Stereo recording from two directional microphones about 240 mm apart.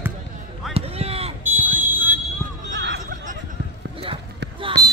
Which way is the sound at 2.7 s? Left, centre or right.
Right.